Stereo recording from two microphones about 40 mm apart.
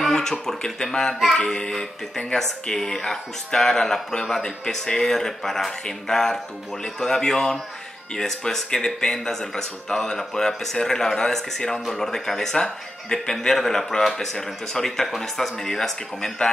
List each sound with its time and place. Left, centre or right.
0.1 s speech: centre
4.6 s speech: centre